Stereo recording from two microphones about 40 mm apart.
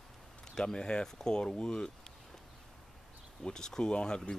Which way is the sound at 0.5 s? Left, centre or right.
Centre.